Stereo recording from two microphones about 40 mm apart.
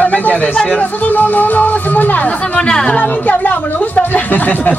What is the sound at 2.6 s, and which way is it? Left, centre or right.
Speech, left.